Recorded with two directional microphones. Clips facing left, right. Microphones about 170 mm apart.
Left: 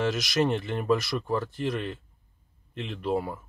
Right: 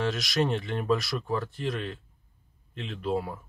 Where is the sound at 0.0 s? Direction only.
Centre (ahead or behind).